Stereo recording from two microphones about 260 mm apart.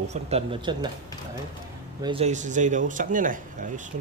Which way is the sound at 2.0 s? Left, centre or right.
Right.